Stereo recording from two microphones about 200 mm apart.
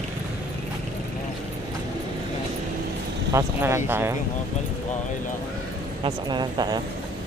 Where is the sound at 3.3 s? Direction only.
15° right (ahead or behind).